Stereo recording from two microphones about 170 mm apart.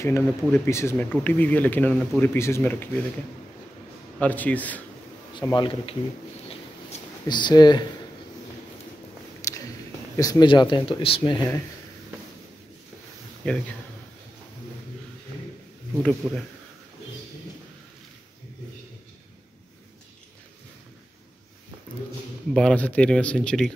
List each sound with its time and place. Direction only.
0.0 s speech: 15° left (ahead or behind)
4.2 s speech: 10° left (ahead or behind)
5.4 s speech: 25° left (ahead or behind)
7.2 s speech: 25° left (ahead or behind)
10.1 s speech: 20° left (ahead or behind)
13.4 s speech: 5° left (ahead or behind)
16.0 s speech: 5° left (ahead or behind)
22.5 s speech: 5° left (ahead or behind)